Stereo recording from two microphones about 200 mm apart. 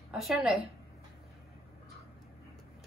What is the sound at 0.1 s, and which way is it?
Speech, centre (ahead or behind).